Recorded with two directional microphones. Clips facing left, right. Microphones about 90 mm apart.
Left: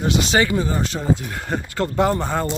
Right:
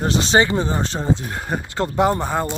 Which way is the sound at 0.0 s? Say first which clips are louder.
Right 2 dB; 35° right (ahead or behind).